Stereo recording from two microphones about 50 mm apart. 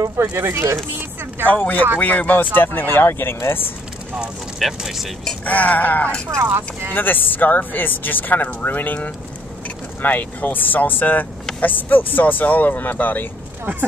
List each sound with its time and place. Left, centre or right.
0.0 s speech: right
1.5 s speech: left
4.6 s speech: centre
5.4 s speech: left
6.4 s speech: right
6.9 s speech: left